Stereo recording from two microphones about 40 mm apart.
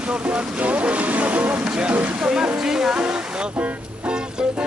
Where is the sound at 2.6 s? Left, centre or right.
Centre.